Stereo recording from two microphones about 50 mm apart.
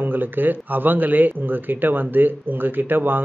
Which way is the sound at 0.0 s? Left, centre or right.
Right.